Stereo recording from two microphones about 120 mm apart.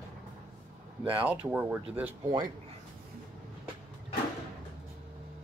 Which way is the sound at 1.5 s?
10° right (ahead or behind).